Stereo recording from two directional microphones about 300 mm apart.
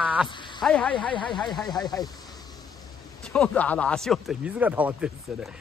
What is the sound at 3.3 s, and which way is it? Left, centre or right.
Speech, centre.